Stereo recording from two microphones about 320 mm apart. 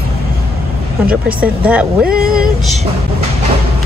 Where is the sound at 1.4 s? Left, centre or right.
Centre.